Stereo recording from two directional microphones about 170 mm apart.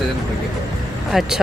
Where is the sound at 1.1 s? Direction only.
Centre (ahead or behind).